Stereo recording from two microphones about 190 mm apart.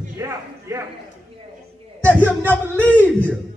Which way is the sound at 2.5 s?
10° left (ahead or behind).